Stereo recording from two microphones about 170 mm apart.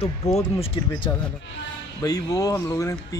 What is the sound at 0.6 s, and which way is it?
Speech, 30° left (ahead or behind).